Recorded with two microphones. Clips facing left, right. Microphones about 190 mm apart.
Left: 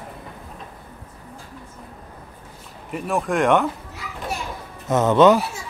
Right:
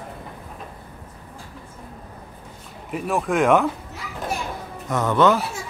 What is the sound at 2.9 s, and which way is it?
Speech, centre (ahead or behind).